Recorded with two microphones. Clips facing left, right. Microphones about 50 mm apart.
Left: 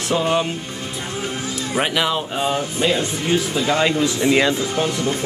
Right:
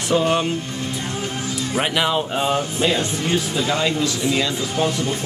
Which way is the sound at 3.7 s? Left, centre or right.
Left.